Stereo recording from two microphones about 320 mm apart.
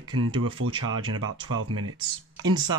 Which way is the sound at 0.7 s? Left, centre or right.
Centre.